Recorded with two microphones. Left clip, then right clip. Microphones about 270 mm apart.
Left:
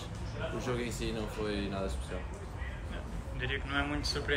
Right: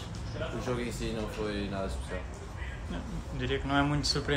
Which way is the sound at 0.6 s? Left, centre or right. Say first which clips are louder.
Right 1 dB; centre.